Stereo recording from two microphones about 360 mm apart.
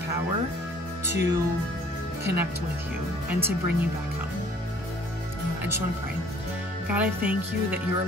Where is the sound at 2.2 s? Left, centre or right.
Centre.